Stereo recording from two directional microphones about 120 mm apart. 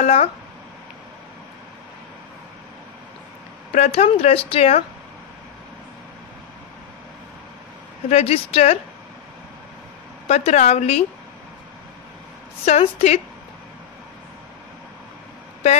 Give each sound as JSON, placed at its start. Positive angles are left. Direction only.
{"t": 0.0, "sound": "speech", "side_deg": 65}
{"t": 3.7, "sound": "speech", "side_deg": 65}
{"t": 8.1, "sound": "speech", "side_deg": 60}
{"t": 10.2, "sound": "speech", "side_deg": 70}
{"t": 12.6, "sound": "speech", "side_deg": 65}